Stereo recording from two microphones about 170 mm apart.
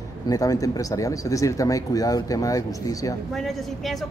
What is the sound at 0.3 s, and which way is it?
Speech, 20° left (ahead or behind).